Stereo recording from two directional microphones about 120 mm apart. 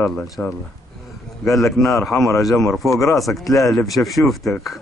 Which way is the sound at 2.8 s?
25° left (ahead or behind).